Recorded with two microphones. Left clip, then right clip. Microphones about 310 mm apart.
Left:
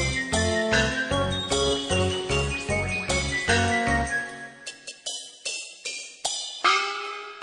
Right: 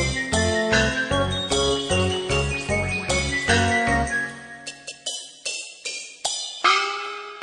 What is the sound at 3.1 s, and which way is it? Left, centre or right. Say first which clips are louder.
Music: right 4 dB; left.